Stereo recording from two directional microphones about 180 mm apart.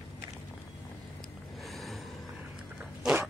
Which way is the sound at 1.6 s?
Centre (ahead or behind).